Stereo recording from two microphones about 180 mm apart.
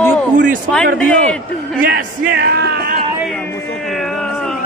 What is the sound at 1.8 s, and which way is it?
Speech, 55° right (ahead or behind).